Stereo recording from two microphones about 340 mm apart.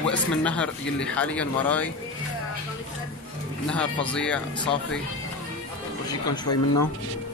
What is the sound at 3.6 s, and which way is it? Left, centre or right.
Speech, centre.